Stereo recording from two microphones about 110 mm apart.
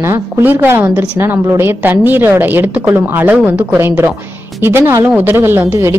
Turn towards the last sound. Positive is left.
turn(degrees=-25)  # may be behind; listen again after turning